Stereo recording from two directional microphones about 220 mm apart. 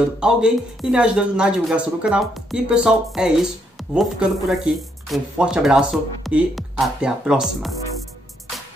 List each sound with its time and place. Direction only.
0.2 s speech: 5° right (ahead or behind)